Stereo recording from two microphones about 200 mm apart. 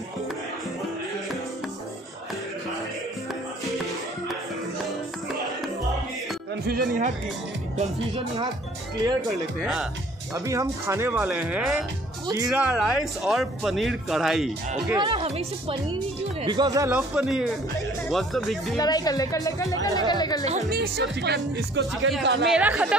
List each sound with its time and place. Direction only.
6.6 s speech: 45° right (ahead or behind)
9.3 s speech: centre (ahead or behind)
10.3 s speech: 15° right (ahead or behind)
15.0 s speech: 25° right (ahead or behind)
17.1 s speech: 5° right (ahead or behind)
18.8 s a woman's voice: 20° left (ahead or behind)
20.7 s speech: 55° right (ahead or behind)
22.5 s speech: 5° right (ahead or behind)